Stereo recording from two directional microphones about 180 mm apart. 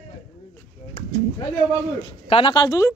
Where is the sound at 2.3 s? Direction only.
25° left (ahead or behind).